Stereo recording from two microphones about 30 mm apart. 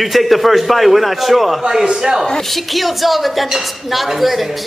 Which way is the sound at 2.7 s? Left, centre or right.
Centre.